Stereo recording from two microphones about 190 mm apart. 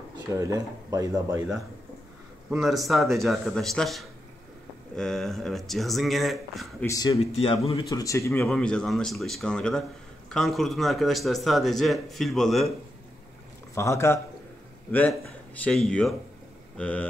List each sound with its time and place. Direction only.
0.3 s speech: 15° right (ahead or behind)
2.6 s speech: centre (ahead or behind)
6.9 s speech: 20° left (ahead or behind)
7.2 s speech: 30° left (ahead or behind)
7.9 s speech: 15° left (ahead or behind); by 12.7 s centre (ahead or behind)
13.7 s a man's voice: 15° left (ahead or behind)